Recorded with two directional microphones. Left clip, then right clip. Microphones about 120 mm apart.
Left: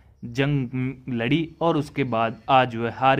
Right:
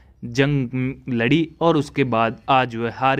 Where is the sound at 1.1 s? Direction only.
40° right (ahead or behind).